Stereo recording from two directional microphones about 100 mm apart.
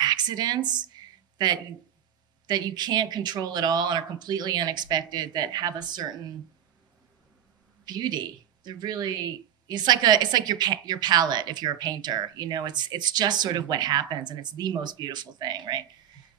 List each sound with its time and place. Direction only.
0.0 s a sound: 45° right (ahead or behind)
2.4 s a woman's voice: 45° right (ahead or behind)
7.8 s a man's voice: 45° right (ahead or behind)